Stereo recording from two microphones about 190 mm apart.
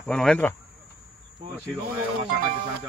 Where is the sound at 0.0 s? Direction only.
5° left (ahead or behind).